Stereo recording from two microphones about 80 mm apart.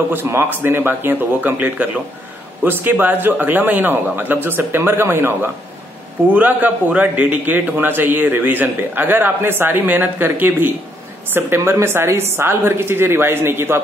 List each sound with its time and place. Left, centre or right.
0.1 s a man's voice: right